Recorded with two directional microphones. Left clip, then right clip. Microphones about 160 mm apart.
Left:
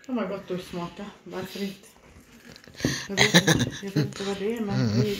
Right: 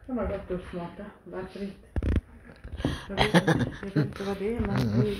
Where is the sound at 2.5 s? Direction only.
15° left (ahead or behind).